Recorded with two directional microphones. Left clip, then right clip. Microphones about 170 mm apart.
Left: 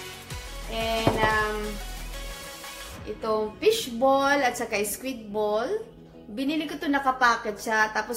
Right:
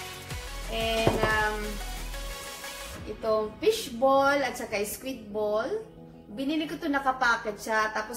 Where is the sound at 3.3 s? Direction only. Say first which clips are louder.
Left 2 dB; 40° left (ahead or behind).